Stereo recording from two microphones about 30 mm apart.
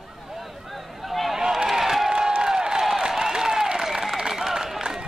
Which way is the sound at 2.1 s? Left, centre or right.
Right.